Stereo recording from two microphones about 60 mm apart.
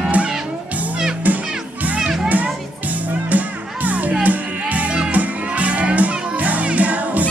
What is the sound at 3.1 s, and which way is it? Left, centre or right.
Music, right.